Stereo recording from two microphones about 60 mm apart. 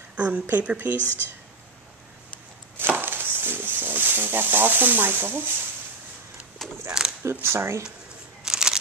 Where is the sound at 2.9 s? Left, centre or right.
Right.